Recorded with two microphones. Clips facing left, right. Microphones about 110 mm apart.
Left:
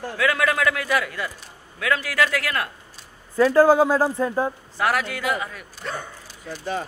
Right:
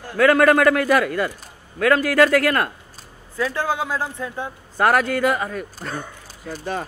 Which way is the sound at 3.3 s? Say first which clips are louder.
Left 8 dB; 40° left (ahead or behind).